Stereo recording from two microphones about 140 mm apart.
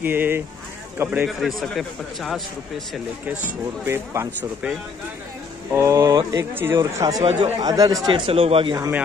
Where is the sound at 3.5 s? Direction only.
20° right (ahead or behind).